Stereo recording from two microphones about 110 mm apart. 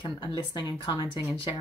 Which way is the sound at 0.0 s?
45° left (ahead or behind).